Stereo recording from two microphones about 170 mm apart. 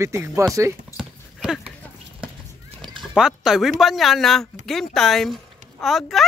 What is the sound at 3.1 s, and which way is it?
Speech, 5° right (ahead or behind).